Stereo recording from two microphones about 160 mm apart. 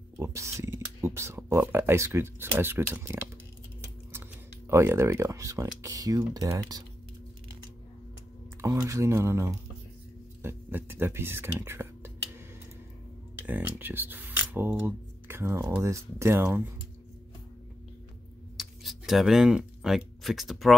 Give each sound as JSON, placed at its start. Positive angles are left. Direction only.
{"t": 0.2, "sound": "speech", "side_deg": -20}
{"t": 8.5, "sound": "speech", "side_deg": -20}
{"t": 13.4, "sound": "speech", "side_deg": -10}
{"t": 18.6, "sound": "speech", "side_deg": 0}